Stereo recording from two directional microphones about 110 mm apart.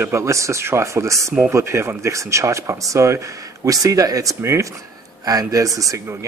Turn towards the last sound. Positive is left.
turn(degrees=-30)  # may be behind; listen again after turning